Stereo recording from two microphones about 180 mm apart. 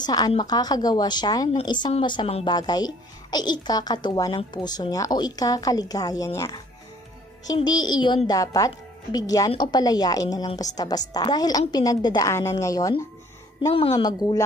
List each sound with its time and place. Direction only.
0.0 s speech: 25° left (ahead or behind)